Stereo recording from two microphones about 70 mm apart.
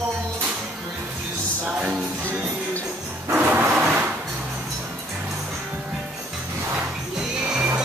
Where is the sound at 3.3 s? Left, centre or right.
Centre.